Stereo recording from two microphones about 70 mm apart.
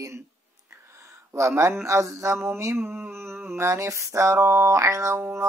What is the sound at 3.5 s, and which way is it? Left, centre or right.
Music, right.